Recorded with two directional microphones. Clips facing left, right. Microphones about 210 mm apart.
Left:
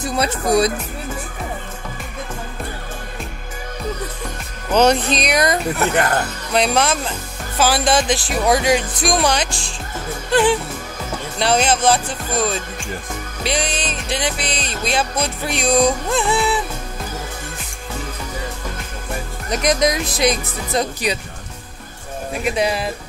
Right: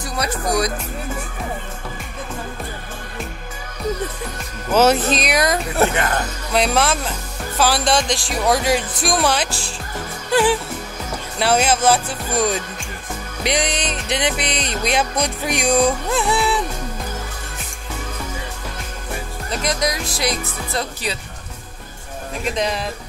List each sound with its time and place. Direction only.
0.0 s speech: 25° left (ahead or behind)
4.7 s speech: 5° right (ahead or behind)
10.3 s music: 5° right (ahead or behind)
19.5 s speech: 20° left (ahead or behind)
22.4 s speech: 10° left (ahead or behind)